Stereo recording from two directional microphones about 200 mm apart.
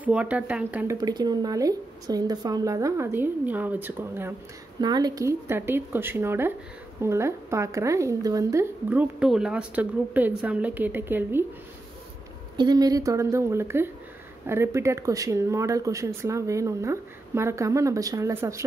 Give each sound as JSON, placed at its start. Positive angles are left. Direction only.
{"t": 0.0, "sound": "speech", "side_deg": -5}
{"t": 1.0, "sound": "speech", "side_deg": -20}
{"t": 4.7, "sound": "speech", "side_deg": -20}
{"t": 12.5, "sound": "speech", "side_deg": -20}